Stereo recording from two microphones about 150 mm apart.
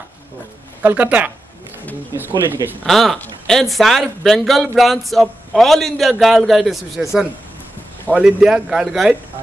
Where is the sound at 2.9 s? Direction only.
Centre (ahead or behind).